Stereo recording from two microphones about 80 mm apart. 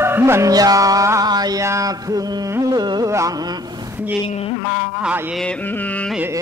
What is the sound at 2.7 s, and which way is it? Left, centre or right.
Speech, right.